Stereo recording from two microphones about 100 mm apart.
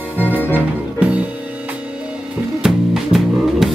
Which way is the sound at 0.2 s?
20° left (ahead or behind).